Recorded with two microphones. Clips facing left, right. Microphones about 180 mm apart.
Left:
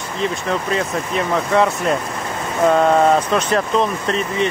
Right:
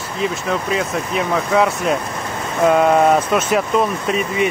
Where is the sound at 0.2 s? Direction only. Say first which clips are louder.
Even; centre (ahead or behind).